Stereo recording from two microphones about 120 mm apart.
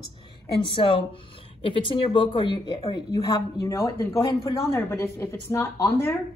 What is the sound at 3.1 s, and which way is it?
Speech, 30° left (ahead or behind).